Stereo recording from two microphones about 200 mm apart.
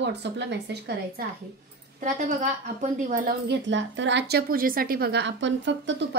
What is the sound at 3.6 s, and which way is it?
A woman's voice, 65° right (ahead or behind).